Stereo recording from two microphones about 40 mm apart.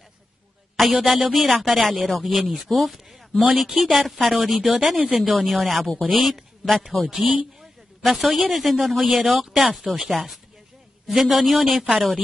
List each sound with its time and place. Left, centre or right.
0.7 s speech: centre
4.7 s speech: centre
5.1 s a woman's voice: centre